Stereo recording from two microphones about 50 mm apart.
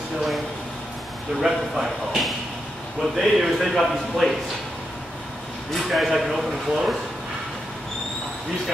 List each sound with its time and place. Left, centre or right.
1.4 s speech: centre
5.9 s speech: centre